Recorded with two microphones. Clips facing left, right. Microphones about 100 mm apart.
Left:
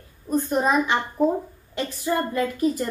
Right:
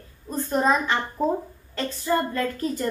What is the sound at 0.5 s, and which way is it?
Speech, 10° left (ahead or behind).